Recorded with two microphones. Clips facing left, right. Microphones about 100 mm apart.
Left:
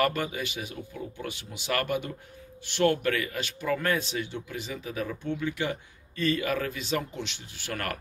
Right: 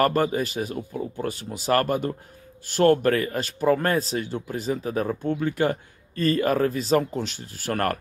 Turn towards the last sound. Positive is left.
turn(degrees=-45)  # may be behind; listen again after turning